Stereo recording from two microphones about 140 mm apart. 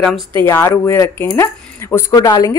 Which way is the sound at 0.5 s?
15° left (ahead or behind).